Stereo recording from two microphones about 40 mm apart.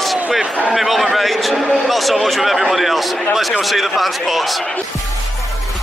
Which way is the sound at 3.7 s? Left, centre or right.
Centre.